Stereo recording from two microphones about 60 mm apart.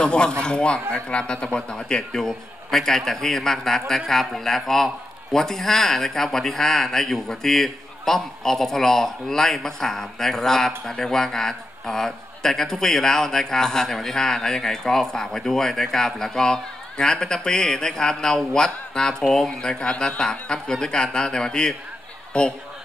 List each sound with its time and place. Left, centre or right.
0.0 s speech: centre